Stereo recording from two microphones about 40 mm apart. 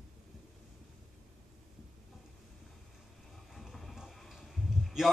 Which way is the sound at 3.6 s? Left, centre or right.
Centre.